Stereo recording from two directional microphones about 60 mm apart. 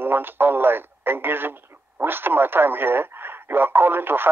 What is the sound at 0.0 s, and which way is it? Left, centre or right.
Speech, right.